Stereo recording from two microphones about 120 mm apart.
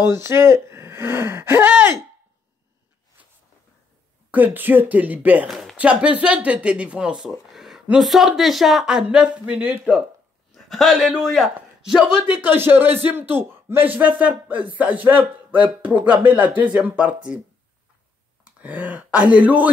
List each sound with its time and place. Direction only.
0.1 s speech: 20° right (ahead or behind)
3.2 s a sound: 10° right (ahead or behind)
4.3 s speech: 15° right (ahead or behind)
5.5 s a sound: centre (ahead or behind)
5.8 s a man's voice: 10° right (ahead or behind)
12.3 s speech: 15° right (ahead or behind)
18.4 s speech: 10° right (ahead or behind)